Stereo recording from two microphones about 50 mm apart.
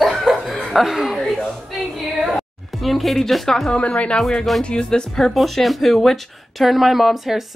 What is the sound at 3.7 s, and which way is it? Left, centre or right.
A woman's voice, left.